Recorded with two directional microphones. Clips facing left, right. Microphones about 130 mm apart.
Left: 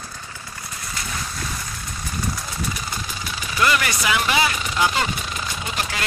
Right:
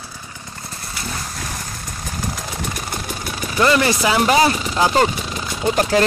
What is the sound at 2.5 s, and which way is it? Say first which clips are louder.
Vehicle: right 2 dB; 55° right (ahead or behind).